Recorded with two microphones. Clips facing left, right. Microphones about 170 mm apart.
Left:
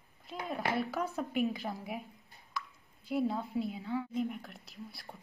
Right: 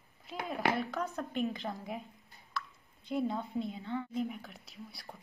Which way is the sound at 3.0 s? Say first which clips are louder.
Left 1 dB; 5° left (ahead or behind).